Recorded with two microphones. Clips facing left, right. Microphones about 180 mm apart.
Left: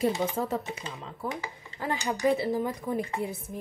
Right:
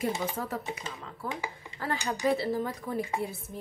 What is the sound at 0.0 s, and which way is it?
Speech, 25° left (ahead or behind).